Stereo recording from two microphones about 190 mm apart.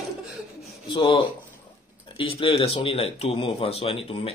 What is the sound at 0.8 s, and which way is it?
Speech, 25° left (ahead or behind).